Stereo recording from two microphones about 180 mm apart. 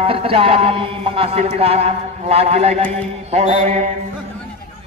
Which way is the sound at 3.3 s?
35° right (ahead or behind).